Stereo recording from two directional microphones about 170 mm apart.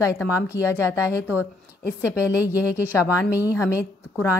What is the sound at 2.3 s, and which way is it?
Speech, 10° right (ahead or behind).